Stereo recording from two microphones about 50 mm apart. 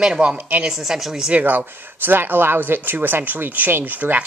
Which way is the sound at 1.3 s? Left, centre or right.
Right.